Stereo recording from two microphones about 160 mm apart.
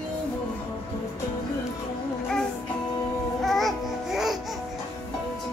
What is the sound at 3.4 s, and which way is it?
Music, centre (ahead or behind).